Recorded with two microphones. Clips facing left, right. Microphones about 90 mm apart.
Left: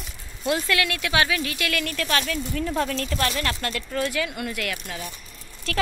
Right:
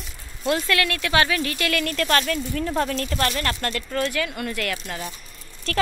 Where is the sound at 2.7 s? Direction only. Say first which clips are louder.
Right 2 dB; 10° right (ahead or behind).